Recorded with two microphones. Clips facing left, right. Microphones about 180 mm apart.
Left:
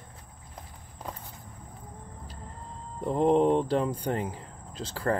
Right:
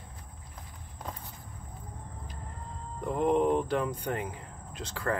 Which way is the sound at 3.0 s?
30° left (ahead or behind).